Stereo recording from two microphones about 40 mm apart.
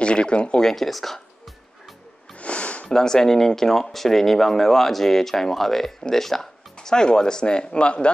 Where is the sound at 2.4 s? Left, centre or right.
Left.